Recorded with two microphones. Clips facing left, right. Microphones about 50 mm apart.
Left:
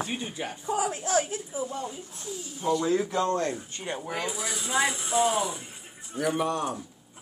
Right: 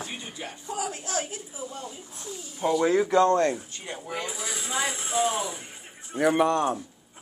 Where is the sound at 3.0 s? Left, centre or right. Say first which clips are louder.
Right 6 dB; right.